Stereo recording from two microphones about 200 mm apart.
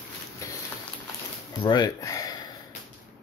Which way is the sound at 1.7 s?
20° left (ahead or behind).